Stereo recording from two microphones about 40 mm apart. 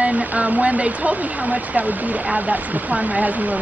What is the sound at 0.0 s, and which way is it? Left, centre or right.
A woman's voice, right.